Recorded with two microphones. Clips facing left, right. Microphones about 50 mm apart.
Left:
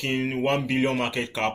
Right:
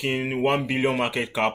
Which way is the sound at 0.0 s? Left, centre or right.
Centre.